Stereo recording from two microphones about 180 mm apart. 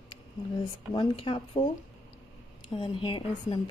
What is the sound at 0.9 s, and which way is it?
Speech, 30° left (ahead or behind).